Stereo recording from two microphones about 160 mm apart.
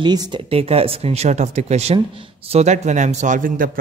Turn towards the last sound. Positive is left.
turn(degrees=-55)  # may be behind; listen again after turning